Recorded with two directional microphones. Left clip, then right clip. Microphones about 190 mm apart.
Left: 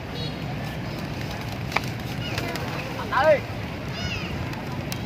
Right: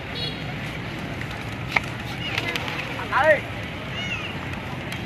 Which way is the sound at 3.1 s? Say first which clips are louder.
Right 1 dB; 45° left (ahead or behind).